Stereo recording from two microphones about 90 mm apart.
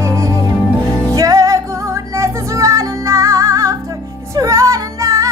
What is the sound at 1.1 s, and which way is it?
Music, 40° right (ahead or behind).